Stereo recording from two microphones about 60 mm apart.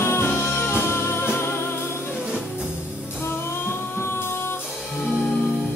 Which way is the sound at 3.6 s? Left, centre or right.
Left.